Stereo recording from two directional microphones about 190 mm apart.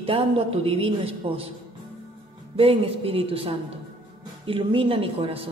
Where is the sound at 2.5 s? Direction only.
30° right (ahead or behind).